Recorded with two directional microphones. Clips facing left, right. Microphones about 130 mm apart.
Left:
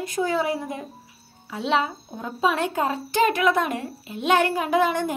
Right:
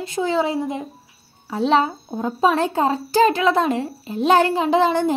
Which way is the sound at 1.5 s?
35° right (ahead or behind).